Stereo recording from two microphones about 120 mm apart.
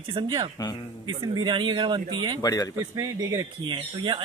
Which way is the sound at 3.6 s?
45° right (ahead or behind).